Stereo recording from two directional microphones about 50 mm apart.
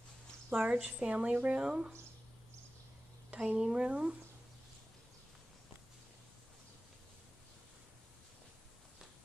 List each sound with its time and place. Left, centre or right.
0.6 s a woman's voice: right
3.4 s a woman's voice: right